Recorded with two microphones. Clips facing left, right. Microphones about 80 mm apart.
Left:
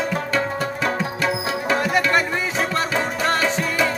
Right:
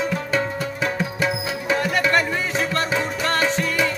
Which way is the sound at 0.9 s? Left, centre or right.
Centre.